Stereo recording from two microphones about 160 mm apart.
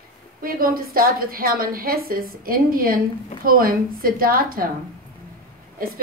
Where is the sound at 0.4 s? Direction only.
65° right (ahead or behind).